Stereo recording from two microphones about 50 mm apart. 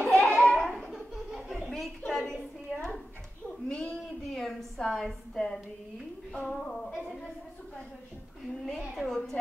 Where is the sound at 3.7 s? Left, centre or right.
Centre.